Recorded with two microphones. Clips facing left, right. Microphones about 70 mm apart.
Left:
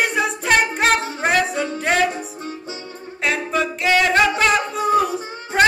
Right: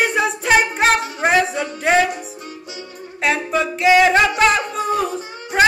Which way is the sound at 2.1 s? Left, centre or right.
Left.